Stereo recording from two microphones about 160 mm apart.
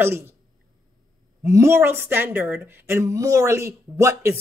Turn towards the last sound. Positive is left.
turn(degrees=-15)  # may be behind; listen again after turning